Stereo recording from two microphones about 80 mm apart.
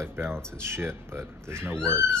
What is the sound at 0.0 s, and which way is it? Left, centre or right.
Speech, right.